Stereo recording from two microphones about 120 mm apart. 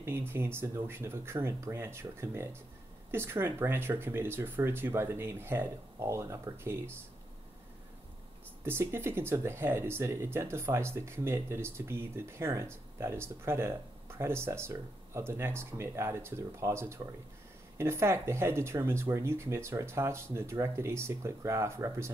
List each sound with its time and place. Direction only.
0.3 s speech: 20° right (ahead or behind)
8.6 s speech: 20° right (ahead or behind)